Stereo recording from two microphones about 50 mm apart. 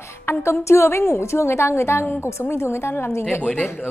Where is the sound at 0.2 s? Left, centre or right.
Left.